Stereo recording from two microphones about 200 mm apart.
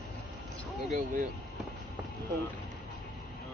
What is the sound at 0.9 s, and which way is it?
Speech, 45° right (ahead or behind).